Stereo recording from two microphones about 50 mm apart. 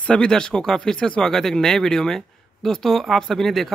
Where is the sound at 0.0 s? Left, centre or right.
Centre.